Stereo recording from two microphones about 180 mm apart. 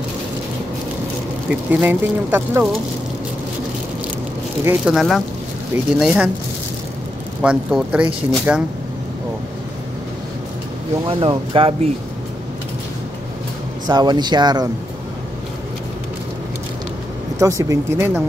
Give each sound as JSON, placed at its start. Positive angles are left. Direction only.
{"t": 1.5, "sound": "speech", "side_deg": -10}
{"t": 4.6, "sound": "speech", "side_deg": -5}
{"t": 7.4, "sound": "speech", "side_deg": -5}
{"t": 11.1, "sound": "speech", "side_deg": -30}
{"t": 13.8, "sound": "speech", "side_deg": -25}
{"t": 17.4, "sound": "speech", "side_deg": -15}